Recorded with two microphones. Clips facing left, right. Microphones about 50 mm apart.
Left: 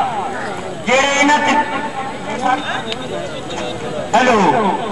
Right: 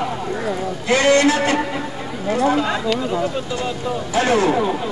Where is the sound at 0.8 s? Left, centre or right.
Left.